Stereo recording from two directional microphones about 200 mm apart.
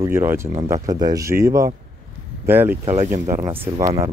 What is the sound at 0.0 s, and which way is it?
Speech, 10° right (ahead or behind).